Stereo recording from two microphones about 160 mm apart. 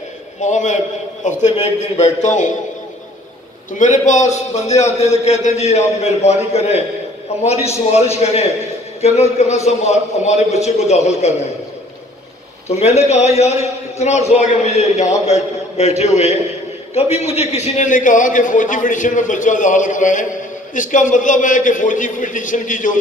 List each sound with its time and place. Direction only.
0.4 s a man's voice: 50° left (ahead or behind)
3.7 s a man's voice: 50° left (ahead or behind)
12.6 s a man's voice: 40° left (ahead or behind)